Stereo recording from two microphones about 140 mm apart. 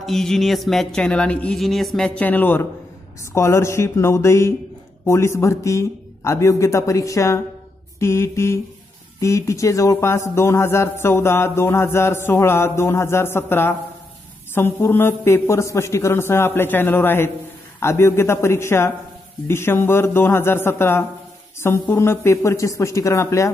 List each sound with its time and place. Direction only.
0.0 s a man's voice: centre (ahead or behind); by 23.5 s 20° left (ahead or behind)